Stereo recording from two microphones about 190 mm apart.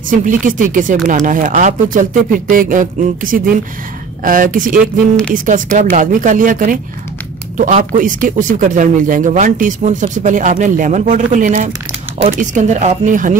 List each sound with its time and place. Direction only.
0.1 s a man's voice: 45° right (ahead or behind)